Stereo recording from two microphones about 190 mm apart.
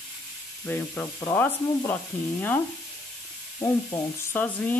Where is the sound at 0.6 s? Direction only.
10° left (ahead or behind).